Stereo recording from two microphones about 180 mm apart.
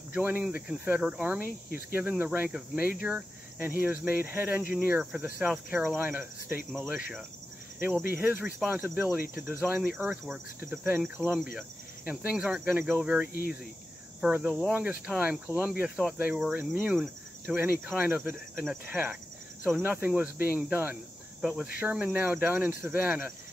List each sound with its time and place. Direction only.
0.1 s cricket: 10° right (ahead or behind)
11.0 s speech: centre (ahead or behind)
12.1 s cricket: 5° right (ahead or behind)
13.3 s speech: 55° left (ahead or behind)
14.2 s speech: 5° right (ahead or behind)
14.7 s cricket: 10° right (ahead or behind)